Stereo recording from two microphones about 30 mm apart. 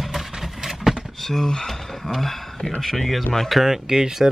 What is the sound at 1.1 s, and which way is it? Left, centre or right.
Speech, centre.